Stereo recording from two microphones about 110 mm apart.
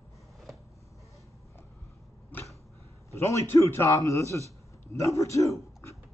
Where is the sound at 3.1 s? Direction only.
25° left (ahead or behind).